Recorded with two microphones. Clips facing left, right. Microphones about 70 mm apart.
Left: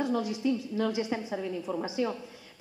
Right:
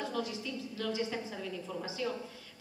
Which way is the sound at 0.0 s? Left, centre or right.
Left.